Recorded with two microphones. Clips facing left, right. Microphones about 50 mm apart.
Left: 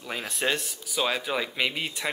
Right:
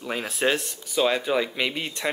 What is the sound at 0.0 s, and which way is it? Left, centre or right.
Speech, centre.